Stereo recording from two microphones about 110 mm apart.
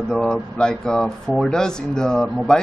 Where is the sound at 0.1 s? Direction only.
5° left (ahead or behind).